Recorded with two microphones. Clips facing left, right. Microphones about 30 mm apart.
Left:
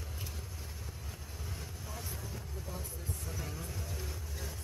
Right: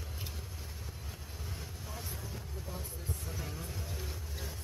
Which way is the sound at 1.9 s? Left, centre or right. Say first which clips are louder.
Even; centre.